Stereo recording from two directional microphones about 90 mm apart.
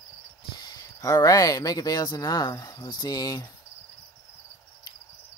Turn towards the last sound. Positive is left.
turn(degrees=45)  # may be behind; listen again after turning